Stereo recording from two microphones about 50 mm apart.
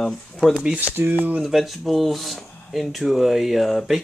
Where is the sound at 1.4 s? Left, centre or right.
Centre.